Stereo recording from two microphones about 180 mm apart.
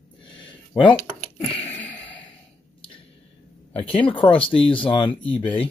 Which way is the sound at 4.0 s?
30° left (ahead or behind).